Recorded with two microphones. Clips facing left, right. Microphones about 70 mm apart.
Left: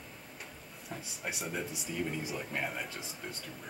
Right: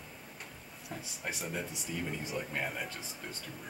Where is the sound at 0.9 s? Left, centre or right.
Centre.